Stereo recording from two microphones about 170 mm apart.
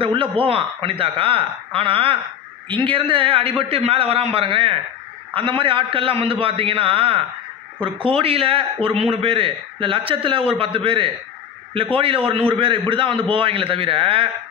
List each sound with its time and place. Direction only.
0.0 s a man's voice: 30° right (ahead or behind)